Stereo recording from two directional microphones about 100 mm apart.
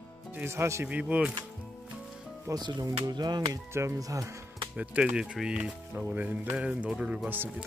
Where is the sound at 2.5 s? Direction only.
45° right (ahead or behind).